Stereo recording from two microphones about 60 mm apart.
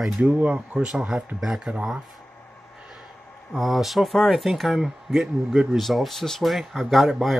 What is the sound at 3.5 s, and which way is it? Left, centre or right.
Speech, centre.